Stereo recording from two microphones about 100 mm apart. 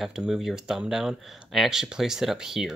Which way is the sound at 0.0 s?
5° right (ahead or behind).